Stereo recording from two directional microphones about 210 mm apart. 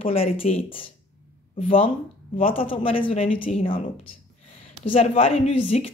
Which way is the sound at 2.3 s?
25° left (ahead or behind).